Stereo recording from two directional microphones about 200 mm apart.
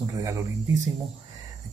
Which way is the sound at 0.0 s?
15° right (ahead or behind).